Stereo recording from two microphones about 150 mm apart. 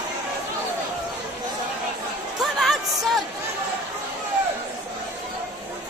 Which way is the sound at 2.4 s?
Centre (ahead or behind).